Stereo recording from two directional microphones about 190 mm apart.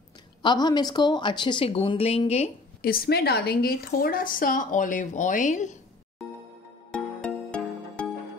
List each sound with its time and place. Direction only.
0.4 s a woman's voice: 25° left (ahead or behind)
2.8 s speech: 50° left (ahead or behind)
6.2 s music: centre (ahead or behind)